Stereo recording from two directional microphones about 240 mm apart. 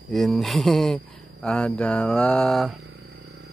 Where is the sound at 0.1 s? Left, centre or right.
Centre.